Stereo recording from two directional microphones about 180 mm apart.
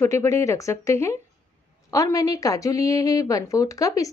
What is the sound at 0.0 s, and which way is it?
A woman's voice, 15° left (ahead or behind).